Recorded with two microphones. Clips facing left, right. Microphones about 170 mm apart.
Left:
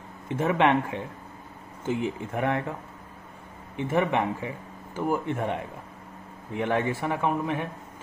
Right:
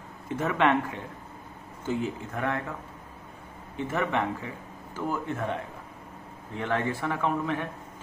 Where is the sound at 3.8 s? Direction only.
15° left (ahead or behind).